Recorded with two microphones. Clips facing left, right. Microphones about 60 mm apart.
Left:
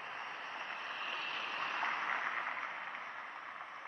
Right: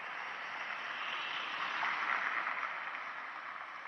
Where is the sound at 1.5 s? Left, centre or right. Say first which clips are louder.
Even; left.